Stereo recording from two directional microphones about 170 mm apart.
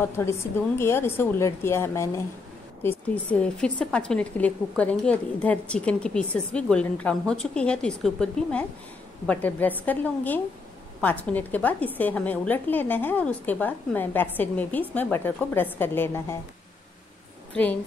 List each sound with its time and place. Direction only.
0.0 s a woman's voice: 15° left (ahead or behind)